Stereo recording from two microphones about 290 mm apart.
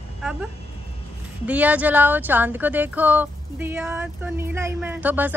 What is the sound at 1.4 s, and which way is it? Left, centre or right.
Speech, centre.